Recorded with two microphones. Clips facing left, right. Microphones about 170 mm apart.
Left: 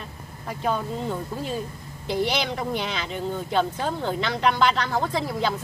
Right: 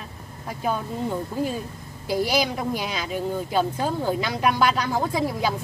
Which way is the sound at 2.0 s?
5° right (ahead or behind).